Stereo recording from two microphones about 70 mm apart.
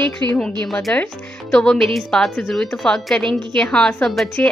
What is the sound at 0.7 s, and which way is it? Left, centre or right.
A woman's voice, centre.